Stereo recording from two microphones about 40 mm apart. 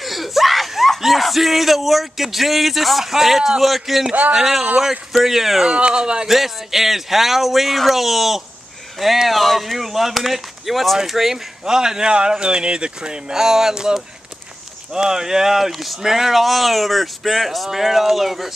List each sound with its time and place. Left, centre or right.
0.0 s speech: centre
5.7 s speech: right
6.2 s speech: centre
11.6 s speech: centre
15.0 s speech: centre